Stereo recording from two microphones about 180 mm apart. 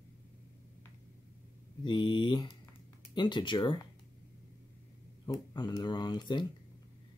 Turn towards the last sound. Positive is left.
turn(degrees=25)  # may be behind; listen again after turning